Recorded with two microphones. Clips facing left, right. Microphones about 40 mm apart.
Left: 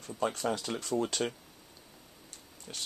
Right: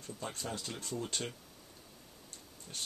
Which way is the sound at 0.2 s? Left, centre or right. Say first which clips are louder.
Left 10 dB; left.